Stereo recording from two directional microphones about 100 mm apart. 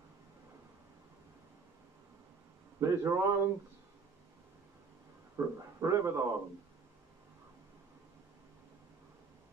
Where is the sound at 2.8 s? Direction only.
25° right (ahead or behind).